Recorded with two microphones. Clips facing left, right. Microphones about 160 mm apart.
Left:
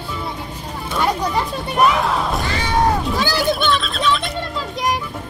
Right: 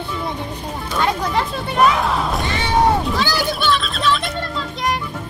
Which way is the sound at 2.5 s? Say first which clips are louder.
Right 2 dB; 20° right (ahead or behind).